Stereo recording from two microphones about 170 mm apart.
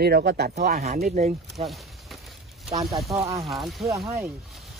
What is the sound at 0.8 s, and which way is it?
Speech, 40° right (ahead or behind).